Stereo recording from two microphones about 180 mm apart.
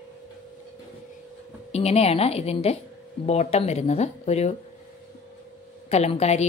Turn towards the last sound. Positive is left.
turn(degrees=35)  # may be behind; listen again after turning